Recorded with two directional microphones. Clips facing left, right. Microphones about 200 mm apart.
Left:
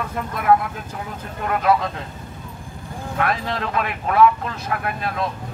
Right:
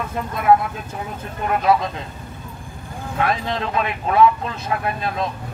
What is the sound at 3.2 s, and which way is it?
Speech, 20° right (ahead or behind).